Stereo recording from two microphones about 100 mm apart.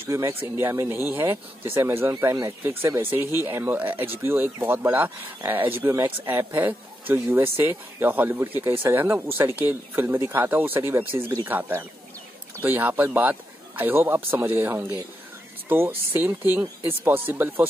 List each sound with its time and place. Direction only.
0.0 s speech: 25° right (ahead or behind)